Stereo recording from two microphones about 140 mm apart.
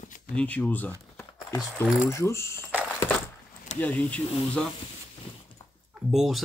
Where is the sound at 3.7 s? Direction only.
10° left (ahead or behind).